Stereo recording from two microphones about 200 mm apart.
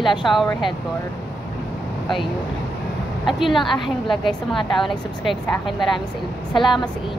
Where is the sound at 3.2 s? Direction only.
Centre (ahead or behind).